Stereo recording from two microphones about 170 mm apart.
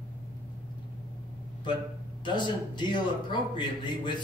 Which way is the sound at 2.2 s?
30° left (ahead or behind).